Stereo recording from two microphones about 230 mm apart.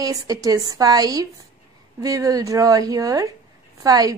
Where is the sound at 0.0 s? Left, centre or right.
Centre.